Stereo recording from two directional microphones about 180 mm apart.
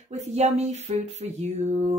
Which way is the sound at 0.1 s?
35° right (ahead or behind).